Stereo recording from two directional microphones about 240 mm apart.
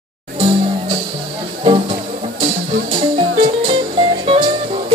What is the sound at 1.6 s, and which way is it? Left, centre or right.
Music, right.